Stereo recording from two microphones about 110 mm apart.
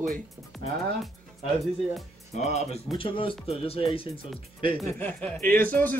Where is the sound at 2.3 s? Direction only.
90° left.